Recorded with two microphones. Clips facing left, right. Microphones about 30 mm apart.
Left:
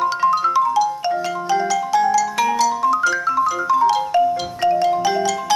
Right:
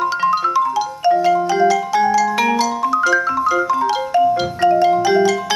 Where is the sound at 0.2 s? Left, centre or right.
Right.